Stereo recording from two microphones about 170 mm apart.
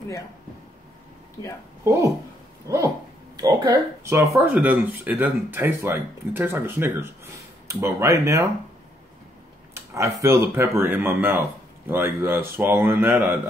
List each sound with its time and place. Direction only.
2.7 s a sound: 20° right (ahead or behind)
3.3 s speech: 20° right (ahead or behind)
9.9 s speech: 15° right (ahead or behind)